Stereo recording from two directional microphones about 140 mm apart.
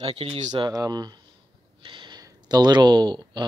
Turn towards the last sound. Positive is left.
turn(degrees=-30)  # may be behind; listen again after turning